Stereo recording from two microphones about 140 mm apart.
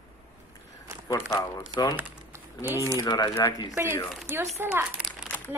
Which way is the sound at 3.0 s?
30° left (ahead or behind).